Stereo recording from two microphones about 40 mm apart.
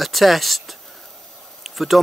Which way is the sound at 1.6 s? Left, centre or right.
Centre.